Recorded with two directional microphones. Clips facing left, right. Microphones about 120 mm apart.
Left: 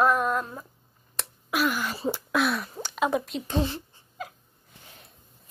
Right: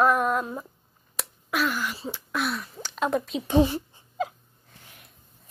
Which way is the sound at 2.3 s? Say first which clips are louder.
Left 3 dB; 85° left.